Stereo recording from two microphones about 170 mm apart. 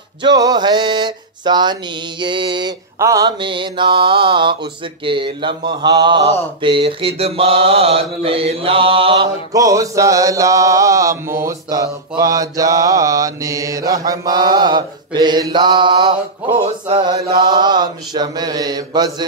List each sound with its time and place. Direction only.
0.2 s mantra: 25° right (ahead or behind)
9.5 s mantra: 20° right (ahead or behind)